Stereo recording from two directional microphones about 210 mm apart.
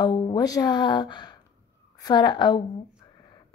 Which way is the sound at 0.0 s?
20° left (ahead or behind).